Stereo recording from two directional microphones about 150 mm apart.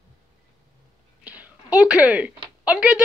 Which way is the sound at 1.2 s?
10° right (ahead or behind).